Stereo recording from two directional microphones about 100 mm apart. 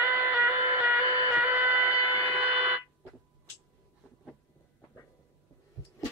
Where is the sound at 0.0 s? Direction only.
15° right (ahead or behind).